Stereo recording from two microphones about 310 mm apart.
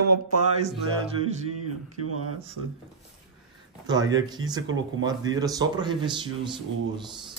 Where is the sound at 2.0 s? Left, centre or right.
Right.